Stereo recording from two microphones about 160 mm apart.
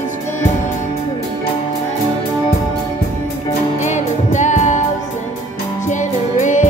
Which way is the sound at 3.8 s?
50° left (ahead or behind).